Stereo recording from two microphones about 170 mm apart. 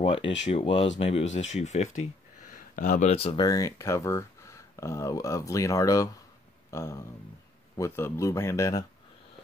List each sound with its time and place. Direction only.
0.0 s speech: 30° left (ahead or behind)
1.3 s speech: 45° left (ahead or behind)
3.1 s speech: 35° left (ahead or behind)